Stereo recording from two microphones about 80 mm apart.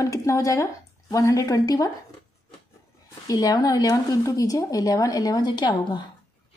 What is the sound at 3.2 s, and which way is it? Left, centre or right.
Speech, left.